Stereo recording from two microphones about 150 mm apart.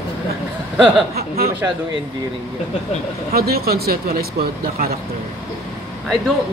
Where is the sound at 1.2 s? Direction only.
90° right.